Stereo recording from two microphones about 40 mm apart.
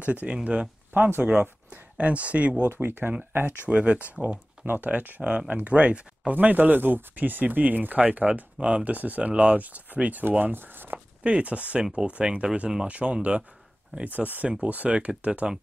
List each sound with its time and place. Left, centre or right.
0.0 s speech: right
0.9 s speech: right
2.0 s speech: right
2.7 s speech: right
3.6 s speech: right
5.7 s speech: right
6.3 s speech: right
10.3 s speech: right
11.2 s speech: right
14.0 s speech: right